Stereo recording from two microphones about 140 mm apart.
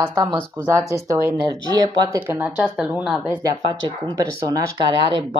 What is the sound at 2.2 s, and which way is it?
A woman's voice, 15° right (ahead or behind).